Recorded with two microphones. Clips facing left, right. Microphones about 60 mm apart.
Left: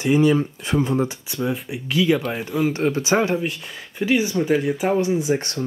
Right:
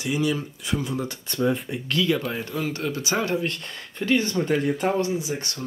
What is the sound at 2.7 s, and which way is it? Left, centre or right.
Speech, left.